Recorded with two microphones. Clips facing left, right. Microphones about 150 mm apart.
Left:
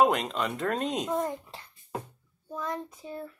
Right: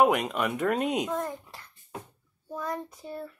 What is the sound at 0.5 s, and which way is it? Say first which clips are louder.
Child singing: right 5 dB; 5° right (ahead or behind).